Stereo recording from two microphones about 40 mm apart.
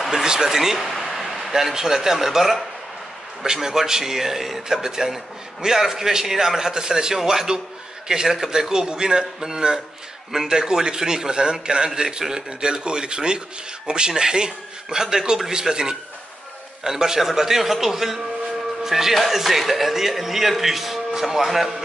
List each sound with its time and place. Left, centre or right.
0.0 s a man's voice: centre
0.7 s a man's voice: centre
3.6 s a man's voice: centre